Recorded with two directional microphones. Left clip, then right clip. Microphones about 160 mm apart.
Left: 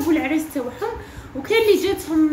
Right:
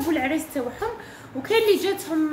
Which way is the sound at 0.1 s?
10° right (ahead or behind).